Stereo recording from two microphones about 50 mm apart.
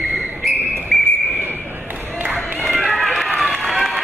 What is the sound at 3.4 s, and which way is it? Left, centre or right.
Run, centre.